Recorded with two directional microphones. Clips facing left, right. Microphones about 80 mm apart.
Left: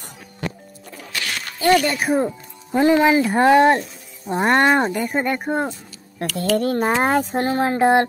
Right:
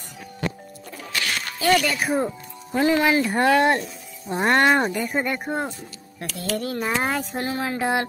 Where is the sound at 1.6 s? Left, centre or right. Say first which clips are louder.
Left 4 dB; left.